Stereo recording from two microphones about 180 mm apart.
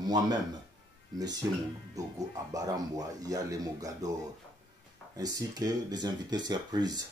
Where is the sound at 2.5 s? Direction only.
20° right (ahead or behind).